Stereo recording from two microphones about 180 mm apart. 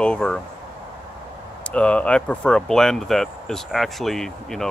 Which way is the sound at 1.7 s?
5° left (ahead or behind).